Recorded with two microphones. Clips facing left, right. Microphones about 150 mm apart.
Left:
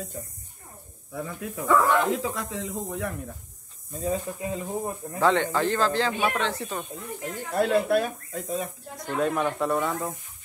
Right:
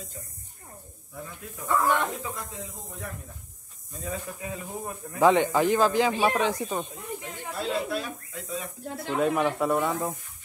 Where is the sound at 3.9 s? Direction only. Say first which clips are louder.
Left 6 dB; 30° left (ahead or behind).